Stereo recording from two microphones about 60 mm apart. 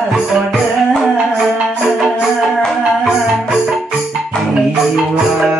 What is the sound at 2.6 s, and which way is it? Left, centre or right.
Music, centre.